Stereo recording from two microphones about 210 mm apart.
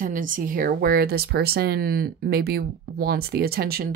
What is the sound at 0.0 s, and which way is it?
Speech, 40° right (ahead or behind).